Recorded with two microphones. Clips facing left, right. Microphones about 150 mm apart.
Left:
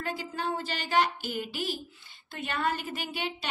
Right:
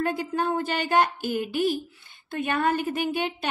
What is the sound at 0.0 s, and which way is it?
A woman's voice, 50° right (ahead or behind).